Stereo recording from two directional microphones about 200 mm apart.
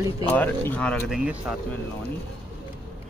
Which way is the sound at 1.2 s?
5° right (ahead or behind).